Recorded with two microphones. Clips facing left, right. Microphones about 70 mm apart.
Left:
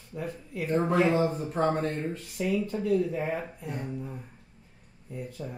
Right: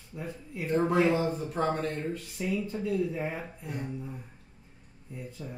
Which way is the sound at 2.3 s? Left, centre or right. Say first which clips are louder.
Left 5 dB; left.